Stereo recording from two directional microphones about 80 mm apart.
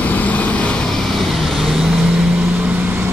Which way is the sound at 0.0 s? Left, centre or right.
Centre.